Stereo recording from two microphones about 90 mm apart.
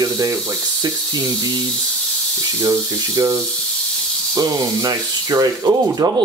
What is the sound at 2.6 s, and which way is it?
Speech, 40° right (ahead or behind).